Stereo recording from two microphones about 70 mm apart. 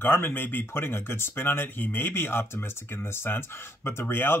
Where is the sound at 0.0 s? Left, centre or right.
Left.